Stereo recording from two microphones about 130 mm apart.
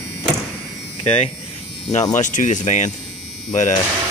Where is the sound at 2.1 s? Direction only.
75° left (ahead or behind).